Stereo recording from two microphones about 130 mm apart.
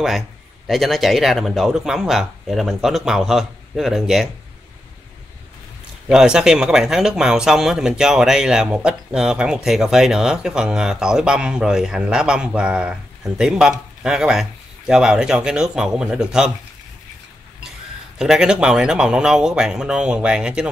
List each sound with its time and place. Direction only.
0.7 s speech: centre (ahead or behind)
6.0 s speech: 5° right (ahead or behind)
17.6 s speech: 5° right (ahead or behind)